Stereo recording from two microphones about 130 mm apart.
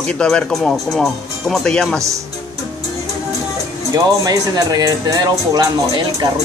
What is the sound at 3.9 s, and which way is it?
Speech, 25° right (ahead or behind).